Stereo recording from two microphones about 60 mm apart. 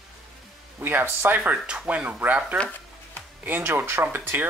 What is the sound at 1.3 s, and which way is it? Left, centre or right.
Speech, right.